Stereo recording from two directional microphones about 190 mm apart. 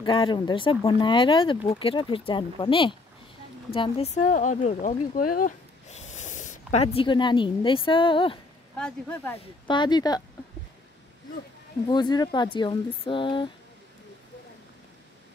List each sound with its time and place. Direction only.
0.0 s speech: 25° left (ahead or behind)
8.7 s speech: 5° left (ahead or behind)
9.7 s speech: 25° left (ahead or behind)
11.9 s speech: 20° left (ahead or behind)